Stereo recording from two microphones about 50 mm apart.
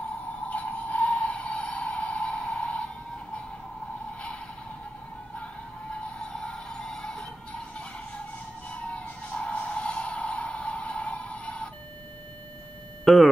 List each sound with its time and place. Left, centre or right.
0.5 s music: left
6.3 s a sound: centre
8.9 s vehicle: left
13.0 s speech: centre